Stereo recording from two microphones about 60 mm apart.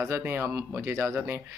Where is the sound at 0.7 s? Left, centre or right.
Right.